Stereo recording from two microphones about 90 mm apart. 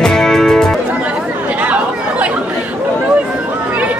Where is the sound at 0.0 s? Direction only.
5° left (ahead or behind).